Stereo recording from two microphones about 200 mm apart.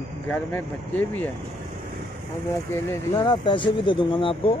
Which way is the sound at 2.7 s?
20° left (ahead or behind).